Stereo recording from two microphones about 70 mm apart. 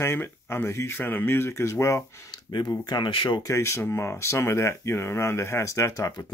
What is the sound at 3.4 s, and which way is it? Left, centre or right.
Speech, left.